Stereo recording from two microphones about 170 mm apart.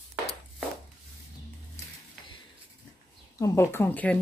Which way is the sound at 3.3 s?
20° left (ahead or behind).